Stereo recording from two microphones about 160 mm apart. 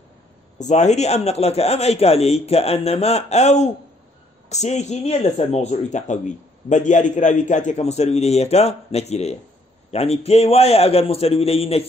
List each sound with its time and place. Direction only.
0.6 s a man's voice: 45° left (ahead or behind)